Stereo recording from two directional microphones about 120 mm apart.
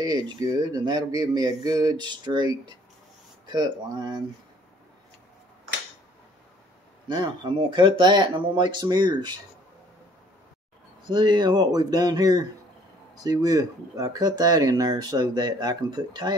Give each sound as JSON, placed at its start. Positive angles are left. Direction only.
{"t": 0.0, "sound": "speech", "side_deg": -35}
{"t": 7.1, "sound": "speech", "side_deg": -45}
{"t": 11.1, "sound": "speech", "side_deg": -35}